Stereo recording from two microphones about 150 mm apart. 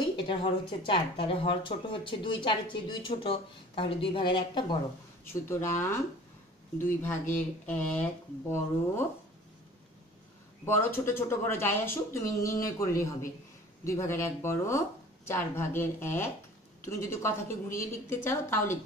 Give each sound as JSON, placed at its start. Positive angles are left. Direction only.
{"t": 0.3, "sound": "speech", "side_deg": 35}
{"t": 5.3, "sound": "speech", "side_deg": 15}
{"t": 10.6, "sound": "speech", "side_deg": 15}
{"t": 13.8, "sound": "speech", "side_deg": 20}